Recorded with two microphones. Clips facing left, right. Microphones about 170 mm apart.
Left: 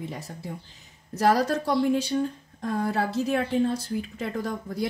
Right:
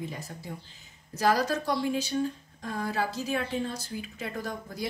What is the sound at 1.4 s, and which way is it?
Speech, 60° left (ahead or behind).